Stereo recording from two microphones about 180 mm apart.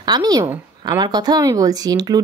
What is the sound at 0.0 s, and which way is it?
A woman's voice, 25° right (ahead or behind).